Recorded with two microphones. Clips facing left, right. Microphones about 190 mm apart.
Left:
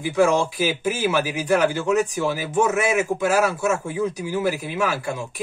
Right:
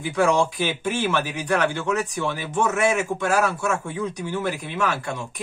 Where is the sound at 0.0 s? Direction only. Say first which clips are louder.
Left 2 dB; centre (ahead or behind).